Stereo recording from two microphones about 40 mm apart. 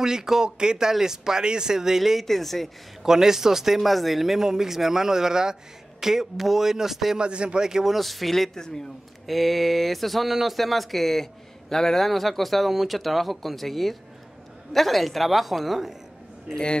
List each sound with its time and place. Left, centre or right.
0.0 s speech: centre
2.2 s speech: centre
3.0 s speech: centre
7.2 s speech: right
7.9 s speech: centre
8.5 s a man's voice: centre
9.2 s a man's voice: centre